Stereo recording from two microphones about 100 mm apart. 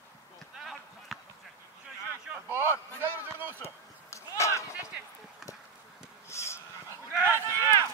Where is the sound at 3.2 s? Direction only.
20° right (ahead or behind).